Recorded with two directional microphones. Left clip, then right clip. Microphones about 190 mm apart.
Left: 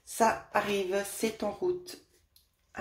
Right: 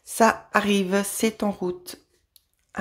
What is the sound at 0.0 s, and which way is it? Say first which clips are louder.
Speech: right 7 dB; 40° right (ahead or behind).